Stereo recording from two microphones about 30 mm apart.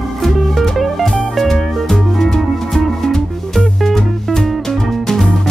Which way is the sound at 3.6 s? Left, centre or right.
Centre.